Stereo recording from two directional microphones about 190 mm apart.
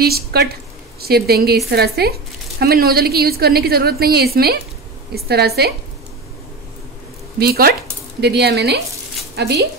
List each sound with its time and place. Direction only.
0.0 s a woman's voice: 55° right (ahead or behind)
7.3 s a woman's voice: 55° right (ahead or behind)